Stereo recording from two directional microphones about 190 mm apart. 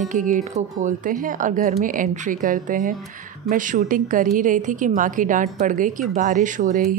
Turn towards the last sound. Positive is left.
turn(degrees=-45)  # may be behind; listen again after turning